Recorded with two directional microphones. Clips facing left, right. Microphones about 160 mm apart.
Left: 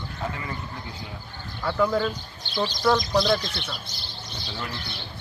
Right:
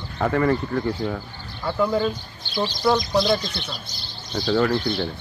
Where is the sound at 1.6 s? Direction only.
10° right (ahead or behind).